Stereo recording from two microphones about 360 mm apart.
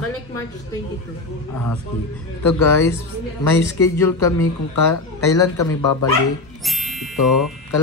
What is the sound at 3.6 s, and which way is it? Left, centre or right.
Speech, left.